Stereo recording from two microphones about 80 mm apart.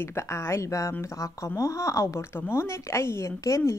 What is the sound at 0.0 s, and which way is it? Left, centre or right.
A woman's voice, left.